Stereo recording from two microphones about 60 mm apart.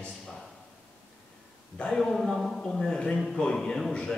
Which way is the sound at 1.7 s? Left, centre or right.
Centre.